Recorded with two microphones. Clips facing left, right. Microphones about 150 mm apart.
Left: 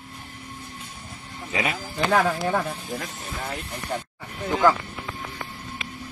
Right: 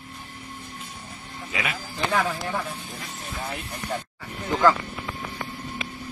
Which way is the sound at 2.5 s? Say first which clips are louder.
Left 5 dB; 50° left (ahead or behind).